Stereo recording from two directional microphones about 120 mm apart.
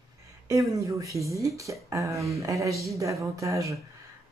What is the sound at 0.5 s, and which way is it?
Speech, 25° right (ahead or behind).